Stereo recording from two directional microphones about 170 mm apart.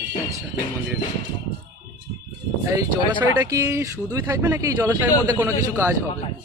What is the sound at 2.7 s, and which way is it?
Speech, 15° right (ahead or behind).